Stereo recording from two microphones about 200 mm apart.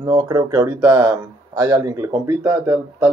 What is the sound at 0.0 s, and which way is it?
Speech, 20° right (ahead or behind).